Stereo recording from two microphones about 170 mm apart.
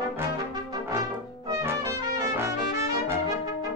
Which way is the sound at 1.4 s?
20° right (ahead or behind).